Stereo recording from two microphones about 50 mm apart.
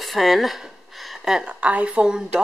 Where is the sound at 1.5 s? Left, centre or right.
Right.